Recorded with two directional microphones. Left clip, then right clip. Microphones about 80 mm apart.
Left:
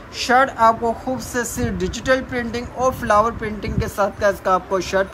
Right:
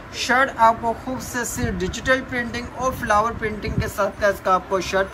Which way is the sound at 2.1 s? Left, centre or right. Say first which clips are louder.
Left 1 dB; centre.